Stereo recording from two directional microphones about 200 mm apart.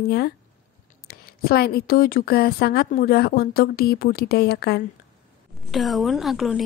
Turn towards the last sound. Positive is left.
turn(degrees=0)  # may be behind; listen again after turning